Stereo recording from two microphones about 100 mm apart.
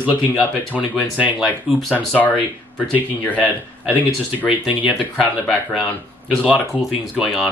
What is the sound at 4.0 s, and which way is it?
Speech, 15° right (ahead or behind).